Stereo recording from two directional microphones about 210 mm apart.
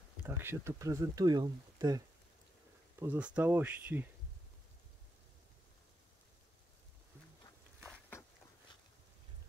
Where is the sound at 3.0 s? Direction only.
5° right (ahead or behind).